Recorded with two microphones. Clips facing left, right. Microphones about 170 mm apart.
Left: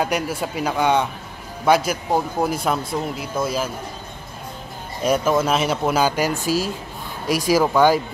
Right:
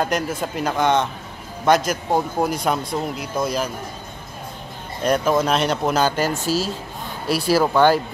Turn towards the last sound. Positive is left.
turn(degrees=10)  # may be behind; listen again after turning